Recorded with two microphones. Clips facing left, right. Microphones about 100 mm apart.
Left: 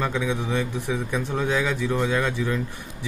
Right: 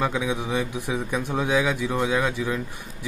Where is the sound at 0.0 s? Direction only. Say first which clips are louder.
Even; 10° right (ahead or behind).